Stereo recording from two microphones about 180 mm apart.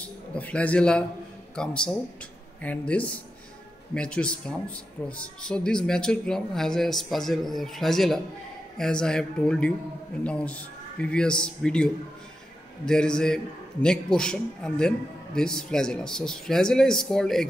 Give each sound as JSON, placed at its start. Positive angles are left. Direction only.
{"t": 0.0, "sound": "a man's voice", "side_deg": 5}